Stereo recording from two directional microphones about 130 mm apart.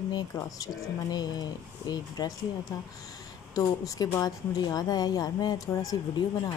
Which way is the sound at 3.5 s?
25° left (ahead or behind).